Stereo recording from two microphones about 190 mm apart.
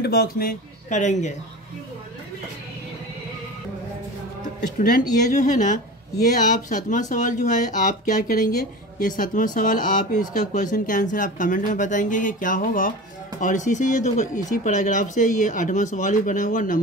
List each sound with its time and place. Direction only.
0.0 s speech: 55° left (ahead or behind)
4.7 s speech: 45° left (ahead or behind)